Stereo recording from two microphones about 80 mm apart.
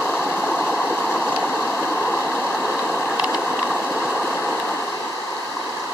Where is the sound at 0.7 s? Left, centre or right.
Centre.